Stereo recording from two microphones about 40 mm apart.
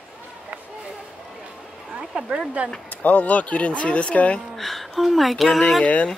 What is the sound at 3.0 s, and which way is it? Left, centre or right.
Speech, left.